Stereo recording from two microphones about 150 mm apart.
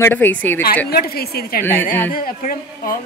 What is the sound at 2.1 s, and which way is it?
Speech, 70° left (ahead or behind).